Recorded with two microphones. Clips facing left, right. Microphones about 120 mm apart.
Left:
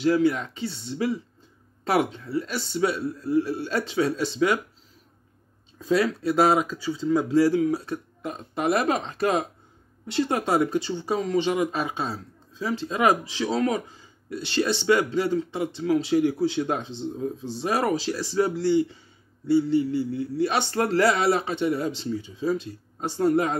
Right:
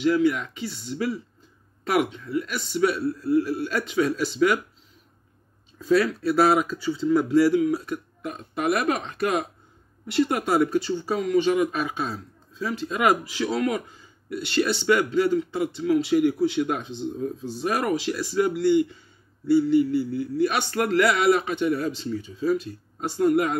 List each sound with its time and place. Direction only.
0.0 s speech: 35° left (ahead or behind)
5.8 s speech: 25° left (ahead or behind)
7.5 s speech: 30° left (ahead or behind)
15.8 s speech: 35° left (ahead or behind)